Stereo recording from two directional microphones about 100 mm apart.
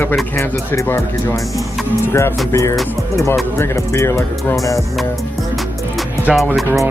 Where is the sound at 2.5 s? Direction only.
30° left (ahead or behind).